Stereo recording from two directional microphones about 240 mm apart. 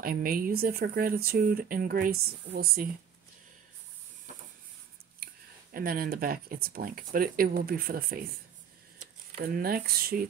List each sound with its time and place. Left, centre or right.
0.0 s speech: right
5.2 s speech: right
9.4 s speech: right